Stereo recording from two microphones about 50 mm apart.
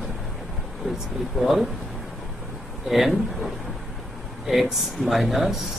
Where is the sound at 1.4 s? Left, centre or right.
Centre.